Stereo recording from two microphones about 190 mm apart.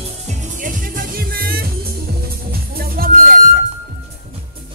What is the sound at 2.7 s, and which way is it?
Music, 50° right (ahead or behind).